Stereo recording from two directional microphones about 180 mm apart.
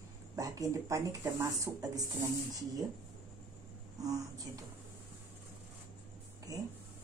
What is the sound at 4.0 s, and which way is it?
Speech, 20° right (ahead or behind).